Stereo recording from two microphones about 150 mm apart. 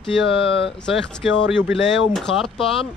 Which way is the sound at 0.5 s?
40° left (ahead or behind).